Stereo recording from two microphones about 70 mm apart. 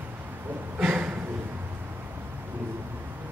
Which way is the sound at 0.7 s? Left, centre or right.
Right.